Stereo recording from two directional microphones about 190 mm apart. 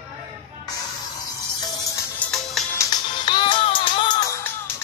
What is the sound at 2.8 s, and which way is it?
Music, 25° left (ahead or behind).